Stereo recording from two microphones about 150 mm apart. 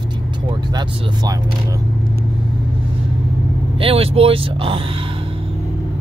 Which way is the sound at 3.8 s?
40° right (ahead or behind).